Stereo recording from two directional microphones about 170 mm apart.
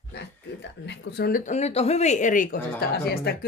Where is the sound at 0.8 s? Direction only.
90° left.